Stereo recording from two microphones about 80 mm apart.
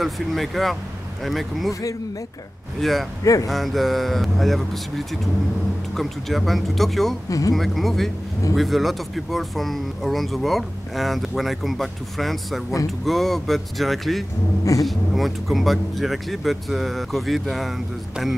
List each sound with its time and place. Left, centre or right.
0.0 s speech: centre
1.7 s speech: left
2.8 s speech: centre
7.2 s speech: left
7.5 s speech: centre